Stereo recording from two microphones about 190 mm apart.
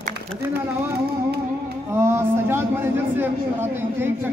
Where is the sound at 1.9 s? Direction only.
15° right (ahead or behind).